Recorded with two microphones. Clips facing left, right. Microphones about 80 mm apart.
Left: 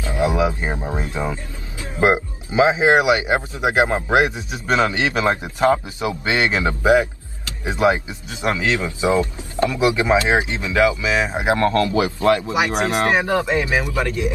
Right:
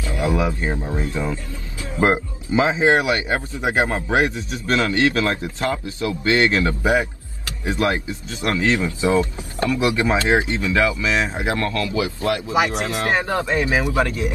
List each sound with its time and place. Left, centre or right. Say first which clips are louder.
0.0 s speech: left 2 dB; left
11.7 s speech: left 5 dB; left
13.1 s speech: left 2 dB; centre